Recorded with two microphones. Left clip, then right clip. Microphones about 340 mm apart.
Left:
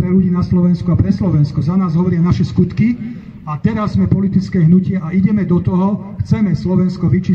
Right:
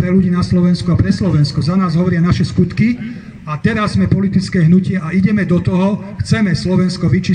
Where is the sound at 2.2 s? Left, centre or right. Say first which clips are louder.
Right 1 dB; left.